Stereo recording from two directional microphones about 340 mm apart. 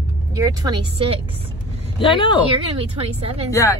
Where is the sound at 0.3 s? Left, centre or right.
Centre.